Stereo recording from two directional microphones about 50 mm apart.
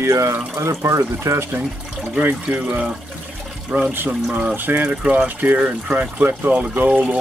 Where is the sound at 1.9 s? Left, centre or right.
Right.